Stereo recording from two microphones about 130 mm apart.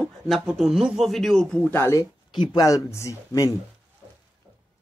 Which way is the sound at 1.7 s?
20° left (ahead or behind).